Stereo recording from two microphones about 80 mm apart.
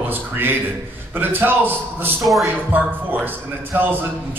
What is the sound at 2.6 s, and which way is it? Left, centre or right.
A man's voice, right.